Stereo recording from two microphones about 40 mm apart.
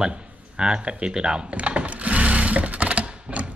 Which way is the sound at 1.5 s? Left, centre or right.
Right.